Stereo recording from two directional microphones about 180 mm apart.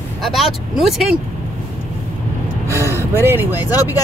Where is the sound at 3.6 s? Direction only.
20° left (ahead or behind).